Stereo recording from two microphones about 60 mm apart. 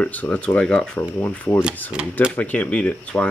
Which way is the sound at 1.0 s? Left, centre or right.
Left.